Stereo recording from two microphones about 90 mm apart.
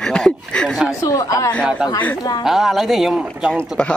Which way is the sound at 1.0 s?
35° left (ahead or behind).